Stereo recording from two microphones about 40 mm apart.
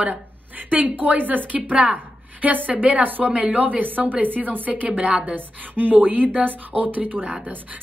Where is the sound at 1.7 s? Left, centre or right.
Right.